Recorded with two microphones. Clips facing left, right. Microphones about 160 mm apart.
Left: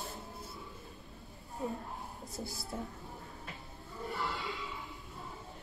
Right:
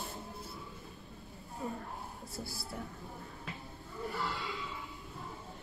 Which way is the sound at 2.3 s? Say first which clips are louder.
Left 2 dB; 20° left (ahead or behind).